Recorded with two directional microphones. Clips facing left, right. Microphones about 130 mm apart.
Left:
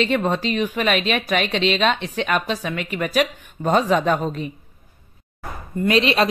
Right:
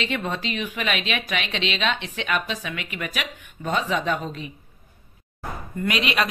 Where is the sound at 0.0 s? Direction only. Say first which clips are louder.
Left 7 dB; 40° left (ahead or behind).